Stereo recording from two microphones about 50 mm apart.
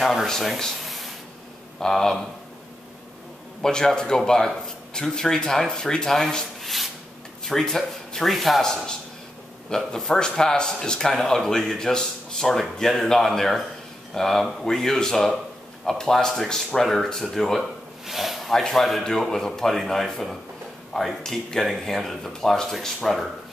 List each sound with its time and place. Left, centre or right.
0.0 s a man's voice: centre
3.6 s a man's voice: centre
9.7 s a man's voice: centre
17.6 s a sound: centre
18.5 s a man's voice: centre